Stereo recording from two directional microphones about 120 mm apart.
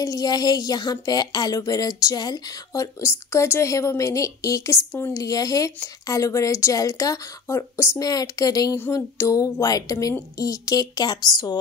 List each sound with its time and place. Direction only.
0.0 s speech: 30° left (ahead or behind)